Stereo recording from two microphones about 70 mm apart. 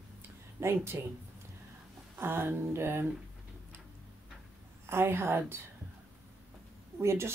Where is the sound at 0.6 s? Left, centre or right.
Right.